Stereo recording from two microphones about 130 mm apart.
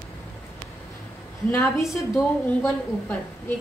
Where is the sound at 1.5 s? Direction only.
20° left (ahead or behind).